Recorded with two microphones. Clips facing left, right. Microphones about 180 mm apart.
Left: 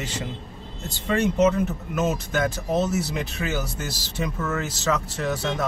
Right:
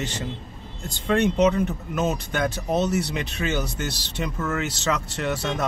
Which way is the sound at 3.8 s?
65° right (ahead or behind).